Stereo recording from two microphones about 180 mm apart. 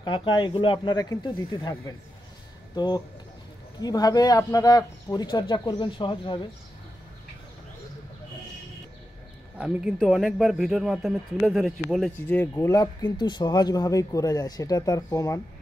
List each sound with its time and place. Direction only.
0.0 s speech: 25° left (ahead or behind)
9.6 s speech: 5° right (ahead or behind); by 15.4 s 15° left (ahead or behind)